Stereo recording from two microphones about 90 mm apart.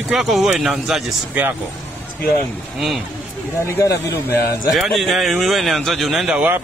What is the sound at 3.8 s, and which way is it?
Speech, 35° left (ahead or behind).